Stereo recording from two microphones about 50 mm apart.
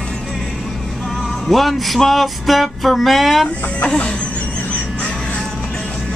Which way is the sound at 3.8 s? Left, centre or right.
Left.